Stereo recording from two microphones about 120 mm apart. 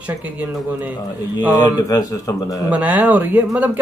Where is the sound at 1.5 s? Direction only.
30° left (ahead or behind).